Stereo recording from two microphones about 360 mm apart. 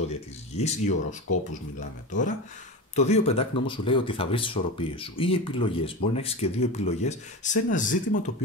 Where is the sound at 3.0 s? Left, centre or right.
Centre.